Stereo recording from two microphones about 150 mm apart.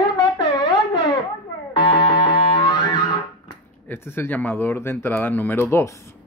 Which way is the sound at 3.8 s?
15° left (ahead or behind).